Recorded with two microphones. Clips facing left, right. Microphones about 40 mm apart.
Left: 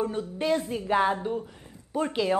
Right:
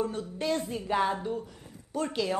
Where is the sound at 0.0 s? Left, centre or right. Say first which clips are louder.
Left 3 dB; centre.